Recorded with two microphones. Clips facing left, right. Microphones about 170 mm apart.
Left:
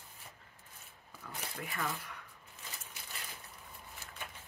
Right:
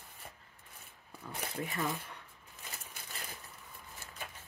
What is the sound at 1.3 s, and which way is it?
Speech, 25° right (ahead or behind).